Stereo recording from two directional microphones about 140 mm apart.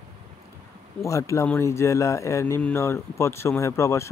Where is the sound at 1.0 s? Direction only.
20° left (ahead or behind).